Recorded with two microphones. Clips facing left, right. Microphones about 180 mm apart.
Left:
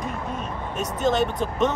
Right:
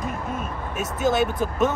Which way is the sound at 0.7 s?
5° right (ahead or behind).